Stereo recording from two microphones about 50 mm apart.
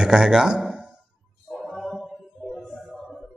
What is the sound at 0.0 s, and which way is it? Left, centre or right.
Speech, centre.